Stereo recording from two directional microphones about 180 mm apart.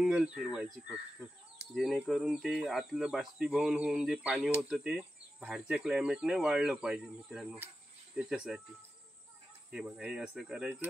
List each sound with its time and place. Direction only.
0.0 s chicken: 5° right (ahead or behind)
0.5 s speech: 5° right (ahead or behind)
2.0 s speech: centre (ahead or behind)
9.7 s speech: 5° right (ahead or behind)